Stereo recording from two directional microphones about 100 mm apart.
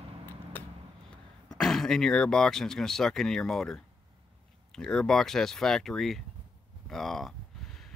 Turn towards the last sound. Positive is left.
turn(degrees=5)  # may be behind; listen again after turning